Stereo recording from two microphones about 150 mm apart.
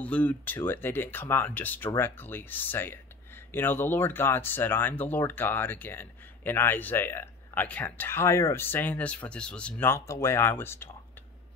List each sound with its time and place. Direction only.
0.0 s speech: 10° left (ahead or behind)